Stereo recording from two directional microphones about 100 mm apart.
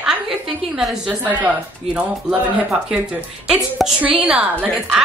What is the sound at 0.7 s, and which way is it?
A woman's voice, 5° right (ahead or behind).